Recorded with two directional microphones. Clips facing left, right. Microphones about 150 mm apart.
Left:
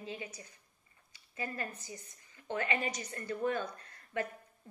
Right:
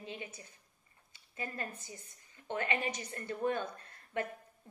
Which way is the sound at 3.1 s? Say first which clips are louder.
Even; 25° right (ahead or behind).